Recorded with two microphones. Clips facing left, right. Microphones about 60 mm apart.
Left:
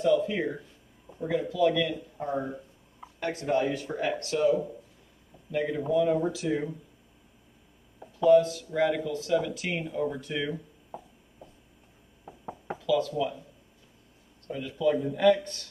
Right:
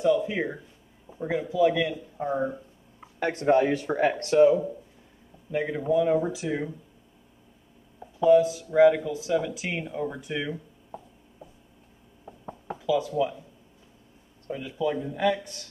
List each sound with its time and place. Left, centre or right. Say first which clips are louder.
0.0 s a man's voice: right 1 dB; centre
3.2 s speech: right 4 dB; right
3.4 s speech: right 6 dB; right
5.5 s speech: right 2 dB; centre
8.0 s speech: right 1 dB; centre
10.9 s a sound: even; centre
12.3 s a sound: even; centre
12.7 s a sound: right 1 dB; centre
14.5 s speech: left 2 dB; centre